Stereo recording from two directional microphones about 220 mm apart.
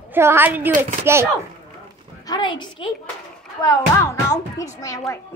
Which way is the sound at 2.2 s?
20° left (ahead or behind).